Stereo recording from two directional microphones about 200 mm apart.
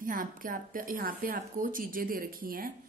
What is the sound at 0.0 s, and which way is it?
Speech, 45° right (ahead or behind).